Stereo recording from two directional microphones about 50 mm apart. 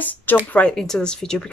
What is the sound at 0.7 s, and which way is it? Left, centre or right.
Speech, centre.